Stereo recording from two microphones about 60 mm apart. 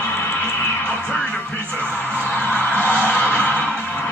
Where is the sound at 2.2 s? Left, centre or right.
Left.